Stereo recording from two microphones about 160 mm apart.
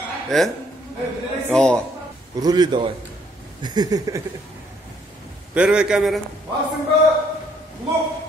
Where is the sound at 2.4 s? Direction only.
25° right (ahead or behind).